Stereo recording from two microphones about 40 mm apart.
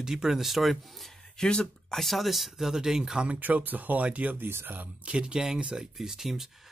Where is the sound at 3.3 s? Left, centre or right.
Right.